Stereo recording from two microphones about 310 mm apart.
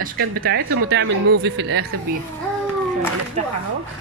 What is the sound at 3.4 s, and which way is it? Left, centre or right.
Speech, right.